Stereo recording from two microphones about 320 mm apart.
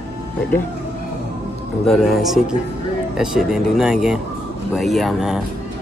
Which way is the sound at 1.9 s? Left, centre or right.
Centre.